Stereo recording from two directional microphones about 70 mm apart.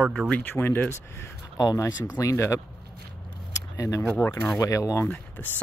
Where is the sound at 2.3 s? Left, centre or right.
Left.